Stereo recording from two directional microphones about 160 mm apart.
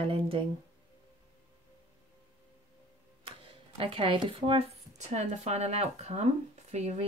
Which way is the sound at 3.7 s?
35° right (ahead or behind).